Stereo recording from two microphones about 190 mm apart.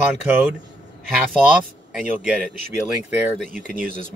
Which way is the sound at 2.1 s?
5° right (ahead or behind).